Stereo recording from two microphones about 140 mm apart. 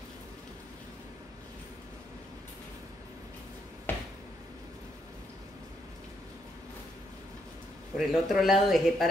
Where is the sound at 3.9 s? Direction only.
15° left (ahead or behind).